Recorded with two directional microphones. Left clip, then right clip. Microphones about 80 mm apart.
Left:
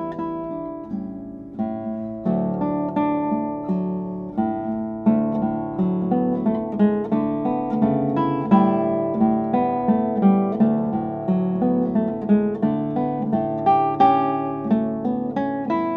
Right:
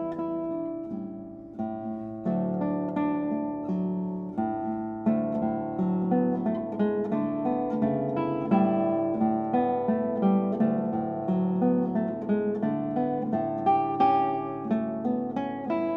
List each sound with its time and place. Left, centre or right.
2.2 s guitar: centre
5.0 s music: centre
6.0 s guitar: centre
9.4 s music: centre
10.2 s music: left